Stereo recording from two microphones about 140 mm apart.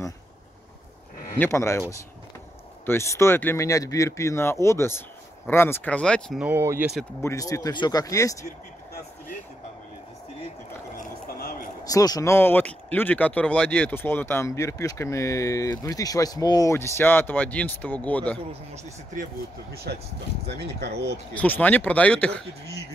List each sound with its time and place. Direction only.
1.4 s speech: 20° left (ahead or behind)
6.4 s speech: 15° right (ahead or behind)
7.2 s speech: 20° left (ahead or behind)
11.2 s a sound: 90° left
11.8 s speech: 25° left (ahead or behind); by 18.4 s 10° left (ahead or behind)
21.3 s speech: 10° left (ahead or behind)